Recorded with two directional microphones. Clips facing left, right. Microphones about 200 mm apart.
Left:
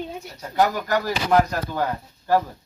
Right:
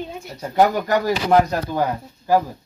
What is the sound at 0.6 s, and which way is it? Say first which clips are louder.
Speech: right 4 dB; 20° right (ahead or behind).